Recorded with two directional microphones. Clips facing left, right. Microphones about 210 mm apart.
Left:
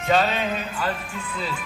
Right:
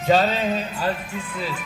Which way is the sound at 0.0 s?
40° right (ahead or behind).